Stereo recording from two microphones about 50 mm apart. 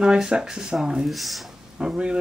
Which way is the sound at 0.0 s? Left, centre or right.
Centre.